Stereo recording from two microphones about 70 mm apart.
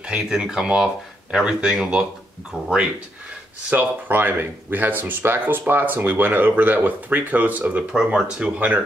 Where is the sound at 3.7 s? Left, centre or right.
Right.